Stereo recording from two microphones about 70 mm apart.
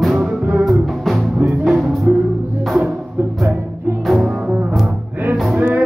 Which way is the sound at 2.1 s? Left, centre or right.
Right.